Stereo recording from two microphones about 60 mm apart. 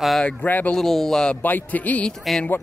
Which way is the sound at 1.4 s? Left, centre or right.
Left.